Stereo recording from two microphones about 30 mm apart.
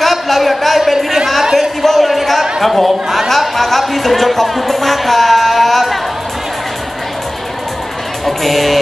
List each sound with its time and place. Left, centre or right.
0.3 s a sound: centre
2.6 s speech: centre
3.3 s music: centre
8.3 s speech: centre